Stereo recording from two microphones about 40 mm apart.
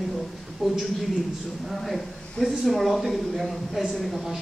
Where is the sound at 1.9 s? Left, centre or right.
Centre.